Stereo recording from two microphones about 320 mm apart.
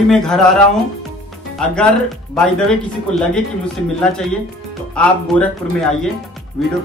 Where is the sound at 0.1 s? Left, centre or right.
Centre.